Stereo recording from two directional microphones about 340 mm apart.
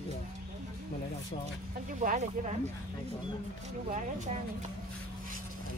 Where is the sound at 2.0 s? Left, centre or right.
Right.